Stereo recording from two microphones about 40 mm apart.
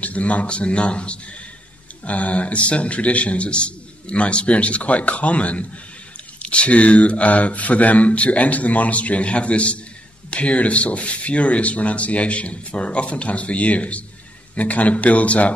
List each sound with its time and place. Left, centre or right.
0.0 s speech: left